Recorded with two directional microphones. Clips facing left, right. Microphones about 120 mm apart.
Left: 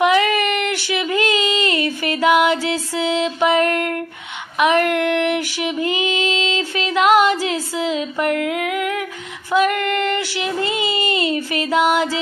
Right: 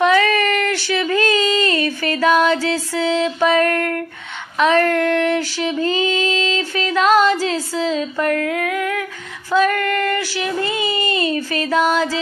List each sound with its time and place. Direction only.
0.0 s a sound: 20° left (ahead or behind)
4.6 s female singing: 15° left (ahead or behind)
9.5 s child singing: 20° left (ahead or behind)